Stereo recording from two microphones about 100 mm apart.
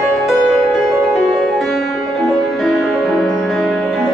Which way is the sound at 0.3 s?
Centre (ahead or behind).